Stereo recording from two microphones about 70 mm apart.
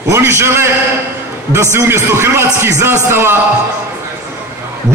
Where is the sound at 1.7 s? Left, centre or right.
Right.